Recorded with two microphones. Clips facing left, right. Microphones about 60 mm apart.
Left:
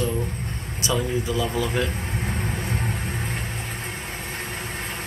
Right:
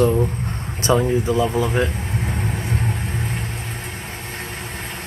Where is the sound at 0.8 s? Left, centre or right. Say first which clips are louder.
Right 7 dB; right.